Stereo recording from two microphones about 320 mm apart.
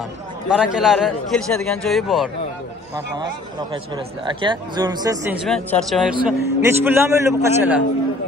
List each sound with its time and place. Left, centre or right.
0.5 s a man's voice: centre
3.7 s speech: centre
5.5 s a man's voice: centre